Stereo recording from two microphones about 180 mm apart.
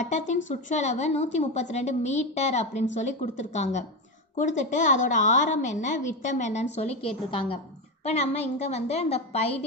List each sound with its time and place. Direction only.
0.0 s a woman's voice: 40° left (ahead or behind)